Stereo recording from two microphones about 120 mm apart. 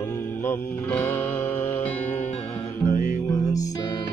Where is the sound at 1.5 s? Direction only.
60° left (ahead or behind).